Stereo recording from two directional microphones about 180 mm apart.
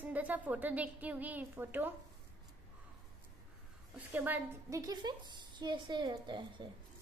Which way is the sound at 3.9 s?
10° right (ahead or behind).